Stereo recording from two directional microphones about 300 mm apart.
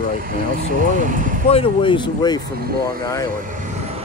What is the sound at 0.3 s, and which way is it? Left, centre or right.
Speech, right.